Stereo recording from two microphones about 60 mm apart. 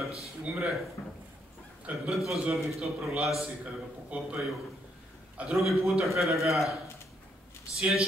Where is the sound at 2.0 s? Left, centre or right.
Centre.